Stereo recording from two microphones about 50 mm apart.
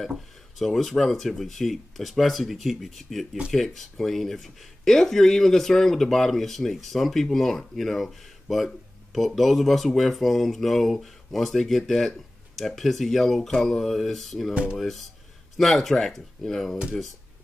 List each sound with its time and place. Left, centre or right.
0.6 s speech: centre
14.5 s speech: right
14.8 s speech: centre